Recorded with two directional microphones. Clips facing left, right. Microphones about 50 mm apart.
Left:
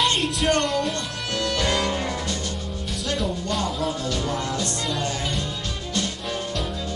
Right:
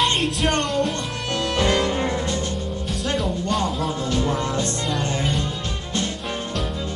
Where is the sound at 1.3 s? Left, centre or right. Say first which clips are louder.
Right 3 dB; right.